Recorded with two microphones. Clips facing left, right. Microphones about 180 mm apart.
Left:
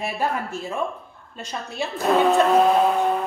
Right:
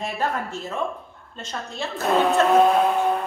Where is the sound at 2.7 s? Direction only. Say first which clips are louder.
Left 1 dB; centre (ahead or behind).